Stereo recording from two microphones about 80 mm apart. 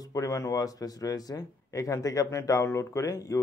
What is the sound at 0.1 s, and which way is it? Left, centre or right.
A man's voice, left.